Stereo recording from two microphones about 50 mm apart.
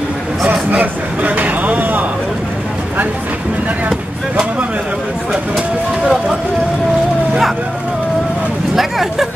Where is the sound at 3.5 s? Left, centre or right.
Right.